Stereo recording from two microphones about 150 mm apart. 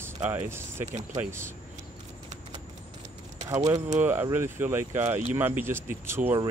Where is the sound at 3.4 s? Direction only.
20° right (ahead or behind).